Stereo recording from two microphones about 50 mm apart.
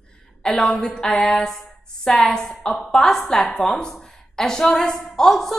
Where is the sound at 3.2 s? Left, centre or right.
Centre.